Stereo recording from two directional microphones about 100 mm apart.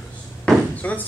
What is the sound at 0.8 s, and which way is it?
Speech, 15° left (ahead or behind).